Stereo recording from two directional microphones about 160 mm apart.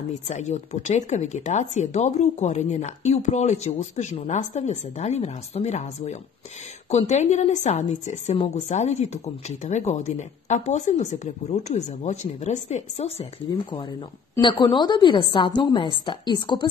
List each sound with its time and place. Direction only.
0.3 s speech: 45° left (ahead or behind)
14.3 s speech: 25° left (ahead or behind)